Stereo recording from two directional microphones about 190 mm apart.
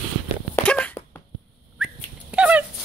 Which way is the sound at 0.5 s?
5° left (ahead or behind).